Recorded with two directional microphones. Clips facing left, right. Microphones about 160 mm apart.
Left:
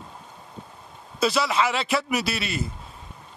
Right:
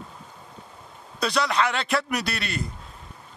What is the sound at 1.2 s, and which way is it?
Speech, 5° left (ahead or behind).